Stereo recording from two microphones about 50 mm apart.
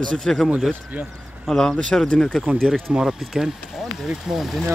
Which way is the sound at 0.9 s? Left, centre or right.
Right.